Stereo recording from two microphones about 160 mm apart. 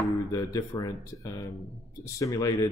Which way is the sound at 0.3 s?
20° left (ahead or behind).